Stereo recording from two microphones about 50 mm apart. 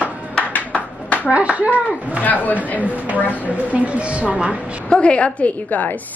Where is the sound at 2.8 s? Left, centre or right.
Right.